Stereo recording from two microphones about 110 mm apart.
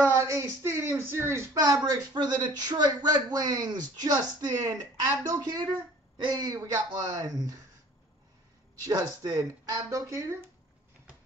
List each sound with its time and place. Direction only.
0.0 s speech: 25° right (ahead or behind)
8.8 s speech: 35° right (ahead or behind)